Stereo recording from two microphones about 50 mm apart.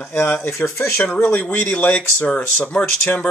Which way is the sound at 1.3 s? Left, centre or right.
Left.